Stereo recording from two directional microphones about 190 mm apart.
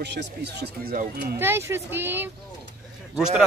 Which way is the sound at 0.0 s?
60° right (ahead or behind).